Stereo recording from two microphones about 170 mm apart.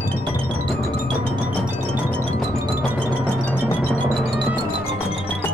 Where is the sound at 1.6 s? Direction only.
10° right (ahead or behind).